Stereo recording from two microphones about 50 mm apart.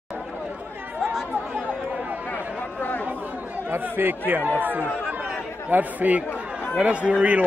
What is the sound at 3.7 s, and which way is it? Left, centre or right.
A man's voice, right.